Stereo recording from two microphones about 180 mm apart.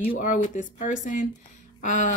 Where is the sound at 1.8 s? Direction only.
45° left (ahead or behind).